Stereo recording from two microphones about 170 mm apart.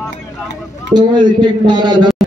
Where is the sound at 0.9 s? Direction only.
25° right (ahead or behind).